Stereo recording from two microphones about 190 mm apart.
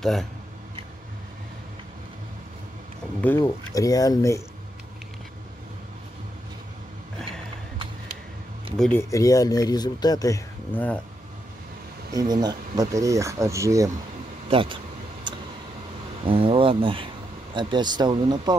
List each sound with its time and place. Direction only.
0.0 s speech: centre (ahead or behind)
3.2 s speech: 10° left (ahead or behind)
8.7 s speech: 5° left (ahead or behind)
9.1 s speech: 20° left (ahead or behind)
12.1 s speech: 20° right (ahead or behind)
14.5 s speech: 25° right (ahead or behind)
15.3 s tick: 25° right (ahead or behind)
16.3 s speech: 30° right (ahead or behind)